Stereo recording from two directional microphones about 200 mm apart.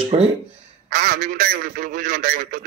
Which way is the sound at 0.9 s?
45° right (ahead or behind).